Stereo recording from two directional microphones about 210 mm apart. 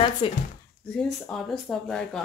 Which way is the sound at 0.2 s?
25° left (ahead or behind).